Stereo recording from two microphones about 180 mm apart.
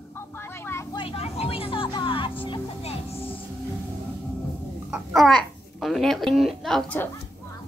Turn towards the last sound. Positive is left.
turn(degrees=5)  # may be behind; listen again after turning